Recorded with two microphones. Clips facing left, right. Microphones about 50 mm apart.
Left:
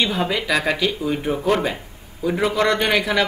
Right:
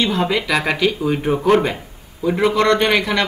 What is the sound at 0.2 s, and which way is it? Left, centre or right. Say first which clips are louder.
Speech: right 3 dB; centre.